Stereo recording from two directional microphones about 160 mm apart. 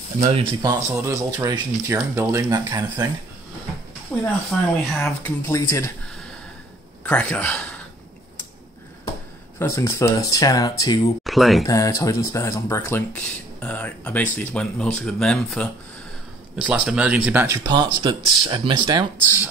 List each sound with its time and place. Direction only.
0.3 s speech: 30° right (ahead or behind)
4.1 s speech: 10° left (ahead or behind)
7.0 s speech: 10° left (ahead or behind)
9.6 s speech: 15° left (ahead or behind)
11.2 s speech: centre (ahead or behind)
11.6 s speech: 20° left (ahead or behind); by 15.7 s 5° left (ahead or behind)
16.6 s speech: 5° right (ahead or behind)
17.6 s speech: 25° right (ahead or behind)